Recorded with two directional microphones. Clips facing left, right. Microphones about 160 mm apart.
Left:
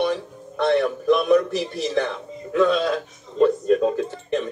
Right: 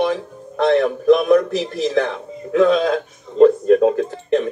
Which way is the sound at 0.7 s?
45° right (ahead or behind).